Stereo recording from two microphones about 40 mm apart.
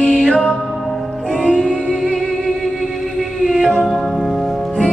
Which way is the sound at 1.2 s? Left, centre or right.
Centre.